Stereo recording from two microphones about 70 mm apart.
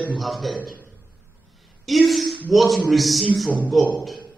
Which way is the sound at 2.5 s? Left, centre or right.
Centre.